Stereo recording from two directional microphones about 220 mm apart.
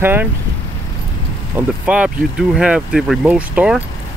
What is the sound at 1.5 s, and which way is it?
Speech, 5° right (ahead or behind).